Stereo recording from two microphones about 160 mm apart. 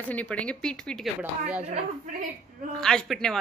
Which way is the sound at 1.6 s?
40° right (ahead or behind).